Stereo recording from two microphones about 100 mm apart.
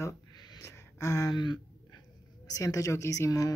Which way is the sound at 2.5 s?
35° left (ahead or behind).